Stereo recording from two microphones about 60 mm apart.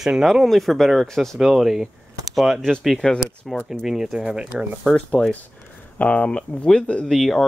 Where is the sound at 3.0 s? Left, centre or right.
Centre.